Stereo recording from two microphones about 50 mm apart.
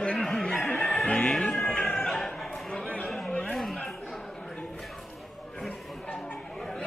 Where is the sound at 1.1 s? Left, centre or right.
Centre.